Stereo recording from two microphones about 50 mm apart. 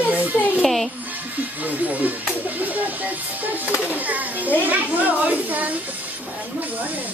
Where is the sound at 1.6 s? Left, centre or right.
Right.